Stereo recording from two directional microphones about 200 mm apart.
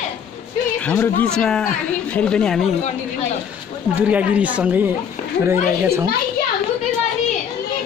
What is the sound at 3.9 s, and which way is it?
Speech, 5° right (ahead or behind).